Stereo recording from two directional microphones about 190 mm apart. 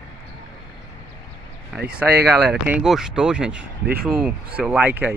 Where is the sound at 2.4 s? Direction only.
5° right (ahead or behind).